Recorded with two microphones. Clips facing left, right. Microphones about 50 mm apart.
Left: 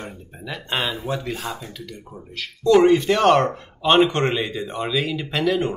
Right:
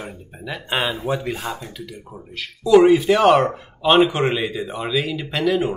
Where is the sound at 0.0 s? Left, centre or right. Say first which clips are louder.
Right 2 dB; centre.